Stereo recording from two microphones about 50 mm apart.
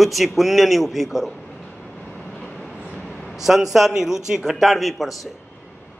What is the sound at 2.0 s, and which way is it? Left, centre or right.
Train, left.